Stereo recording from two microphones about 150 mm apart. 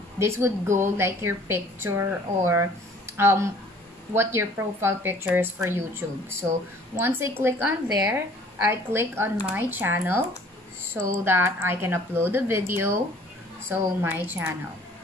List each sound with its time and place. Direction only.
0.2 s a woman's voice: 15° right (ahead or behind)